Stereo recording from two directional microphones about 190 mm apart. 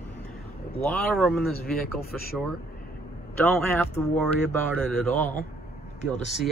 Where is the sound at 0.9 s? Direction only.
5° left (ahead or behind).